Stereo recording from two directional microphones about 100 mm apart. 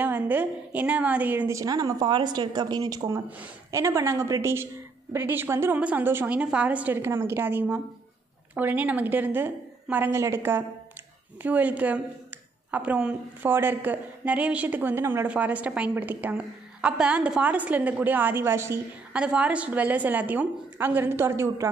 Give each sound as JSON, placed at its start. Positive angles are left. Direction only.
{"t": 0.0, "sound": "a woman's voice", "side_deg": -20}
{"t": 1.5, "sound": "a woman's voice", "side_deg": -35}
{"t": 3.7, "sound": "a woman's voice", "side_deg": -30}
{"t": 19.1, "sound": "a woman's voice", "side_deg": -10}